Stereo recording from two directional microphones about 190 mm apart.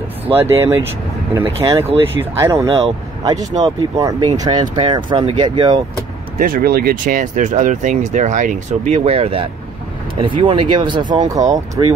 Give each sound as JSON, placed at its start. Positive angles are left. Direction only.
{"t": 0.3, "sound": "speech", "side_deg": -15}
{"t": 6.3, "sound": "speech", "side_deg": -45}